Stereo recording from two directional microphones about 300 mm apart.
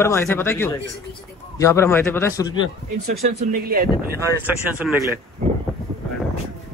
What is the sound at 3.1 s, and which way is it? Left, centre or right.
Speech, right.